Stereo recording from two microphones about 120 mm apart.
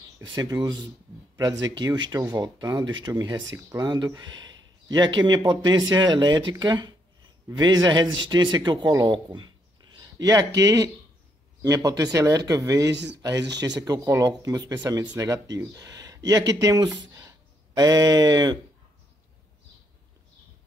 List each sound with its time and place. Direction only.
0.2 s a man's voice: 35° right (ahead or behind)